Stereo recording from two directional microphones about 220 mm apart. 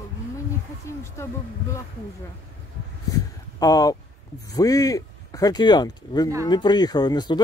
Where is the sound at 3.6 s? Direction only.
15° left (ahead or behind).